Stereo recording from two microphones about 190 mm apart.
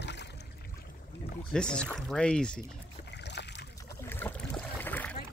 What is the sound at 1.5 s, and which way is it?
Speech, 5° left (ahead or behind).